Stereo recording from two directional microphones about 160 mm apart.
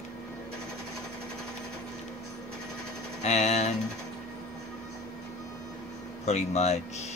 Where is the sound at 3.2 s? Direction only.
45° left (ahead or behind).